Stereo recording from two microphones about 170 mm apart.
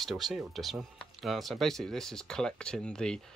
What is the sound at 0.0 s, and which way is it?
Speech, centre (ahead or behind).